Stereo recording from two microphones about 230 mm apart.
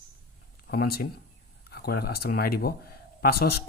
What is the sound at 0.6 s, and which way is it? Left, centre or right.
Speech, left.